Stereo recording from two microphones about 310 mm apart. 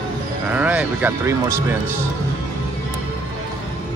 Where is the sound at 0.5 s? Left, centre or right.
Centre.